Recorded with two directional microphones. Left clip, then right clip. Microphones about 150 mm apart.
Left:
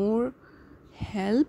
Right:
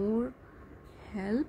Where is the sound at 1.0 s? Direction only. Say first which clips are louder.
Left 8 dB; 55° left (ahead or behind).